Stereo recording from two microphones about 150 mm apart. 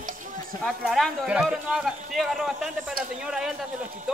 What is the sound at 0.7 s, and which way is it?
Speech, centre (ahead or behind).